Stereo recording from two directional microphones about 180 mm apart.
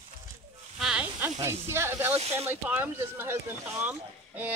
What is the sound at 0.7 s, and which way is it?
Speech, 5° right (ahead or behind).